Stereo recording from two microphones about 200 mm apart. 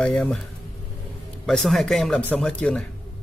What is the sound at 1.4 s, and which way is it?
Speech, centre (ahead or behind).